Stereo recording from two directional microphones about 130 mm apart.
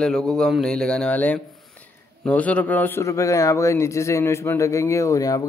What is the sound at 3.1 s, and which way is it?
A man's voice, 25° left (ahead or behind).